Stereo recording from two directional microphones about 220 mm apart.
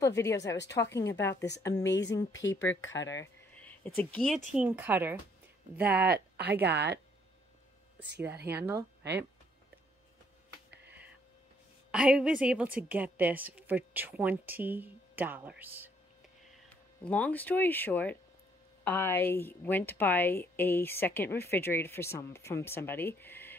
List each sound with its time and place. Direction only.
0.0 s speech: 15° left (ahead or behind)
2.6 s speech: 60° left (ahead or behind)
3.1 s speech: 10° left (ahead or behind)
4.5 s a woman's voice: 5° right (ahead or behind)
6.0 s speech: 45° right (ahead or behind)
11.9 s a woman's voice: 5° right (ahead or behind)
16.6 s speech: 5° left (ahead or behind)